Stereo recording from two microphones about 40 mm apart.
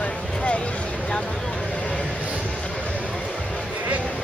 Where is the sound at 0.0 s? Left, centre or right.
Left.